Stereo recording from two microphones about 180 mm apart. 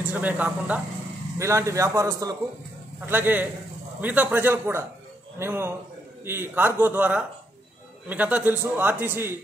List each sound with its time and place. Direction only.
0.0 s a man's voice: 10° right (ahead or behind)